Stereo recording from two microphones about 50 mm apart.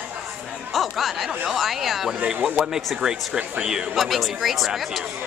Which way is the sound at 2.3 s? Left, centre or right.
Centre.